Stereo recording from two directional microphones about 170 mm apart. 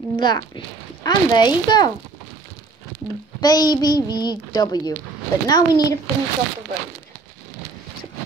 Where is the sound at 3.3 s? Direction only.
25° left (ahead or behind).